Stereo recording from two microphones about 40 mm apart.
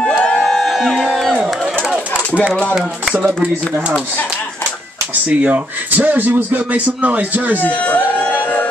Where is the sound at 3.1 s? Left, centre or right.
Right.